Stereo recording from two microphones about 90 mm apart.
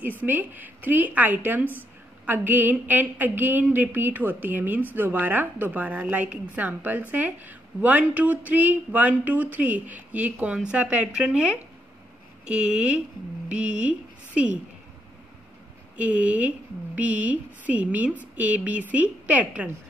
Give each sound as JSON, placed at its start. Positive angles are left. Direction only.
{"t": 0.2, "sound": "a woman's voice", "side_deg": -20}
{"t": 16.0, "sound": "a woman's voice", "side_deg": -15}